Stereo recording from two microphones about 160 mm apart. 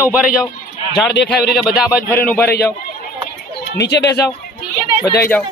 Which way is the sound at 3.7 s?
90° left.